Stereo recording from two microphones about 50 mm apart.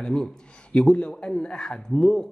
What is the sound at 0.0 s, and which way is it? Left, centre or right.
A man's voice, centre.